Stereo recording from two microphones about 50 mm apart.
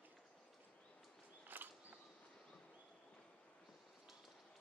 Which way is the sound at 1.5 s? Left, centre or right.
Right.